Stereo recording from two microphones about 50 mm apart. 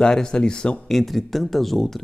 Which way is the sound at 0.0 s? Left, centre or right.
Centre.